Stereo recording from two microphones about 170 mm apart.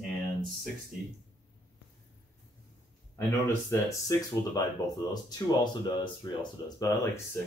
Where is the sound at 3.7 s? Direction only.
20° left (ahead or behind).